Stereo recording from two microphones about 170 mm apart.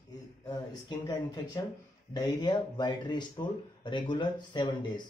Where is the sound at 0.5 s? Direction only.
25° left (ahead or behind).